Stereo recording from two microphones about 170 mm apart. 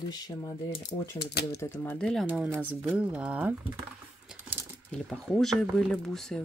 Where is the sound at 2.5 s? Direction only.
10° right (ahead or behind).